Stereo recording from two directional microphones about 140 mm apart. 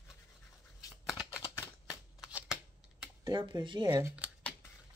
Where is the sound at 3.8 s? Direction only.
20° right (ahead or behind).